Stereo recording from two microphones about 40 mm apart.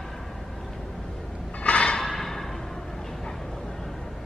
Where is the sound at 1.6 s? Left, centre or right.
Left.